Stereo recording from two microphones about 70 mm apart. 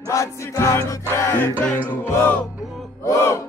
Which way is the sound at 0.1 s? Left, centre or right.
Left.